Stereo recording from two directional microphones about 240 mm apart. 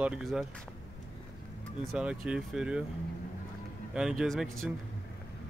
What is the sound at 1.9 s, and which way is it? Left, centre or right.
Speech, centre.